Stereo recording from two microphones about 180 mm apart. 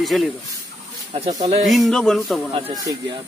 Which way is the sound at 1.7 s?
Centre (ahead or behind).